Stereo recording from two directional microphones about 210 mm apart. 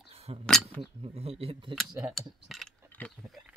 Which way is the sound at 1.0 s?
30° right (ahead or behind).